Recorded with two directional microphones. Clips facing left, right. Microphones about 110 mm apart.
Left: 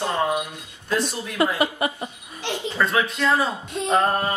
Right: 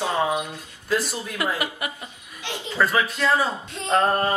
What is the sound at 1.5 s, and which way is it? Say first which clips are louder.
Speech: left 6 dB; 30° left (ahead or behind).